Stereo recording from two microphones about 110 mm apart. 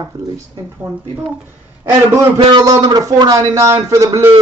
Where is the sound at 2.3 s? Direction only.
35° right (ahead or behind).